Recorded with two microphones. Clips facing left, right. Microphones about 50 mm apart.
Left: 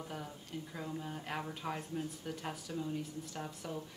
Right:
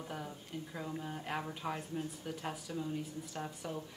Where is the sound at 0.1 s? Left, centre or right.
Centre.